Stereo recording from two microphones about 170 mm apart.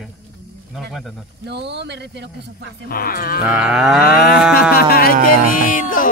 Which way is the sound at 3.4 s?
5° right (ahead or behind).